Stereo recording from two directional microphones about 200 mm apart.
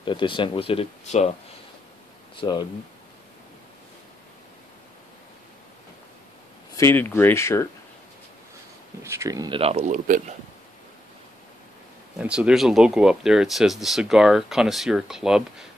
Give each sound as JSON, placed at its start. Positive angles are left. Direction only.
{"t": 0.0, "sound": "speech", "side_deg": 25}
{"t": 2.3, "sound": "speech", "side_deg": 20}
{"t": 6.8, "sound": "speech", "side_deg": 10}
{"t": 9.0, "sound": "speech", "side_deg": -15}
{"t": 9.6, "sound": "speech", "side_deg": -30}
{"t": 12.2, "sound": "speech", "side_deg": -5}